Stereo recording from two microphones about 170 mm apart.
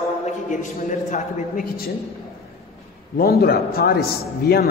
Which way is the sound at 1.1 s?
55° left (ahead or behind).